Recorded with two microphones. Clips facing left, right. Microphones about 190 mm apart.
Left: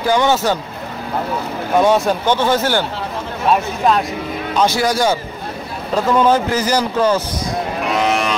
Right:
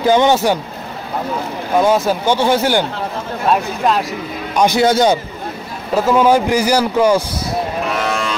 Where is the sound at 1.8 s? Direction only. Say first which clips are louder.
Even; centre (ahead or behind).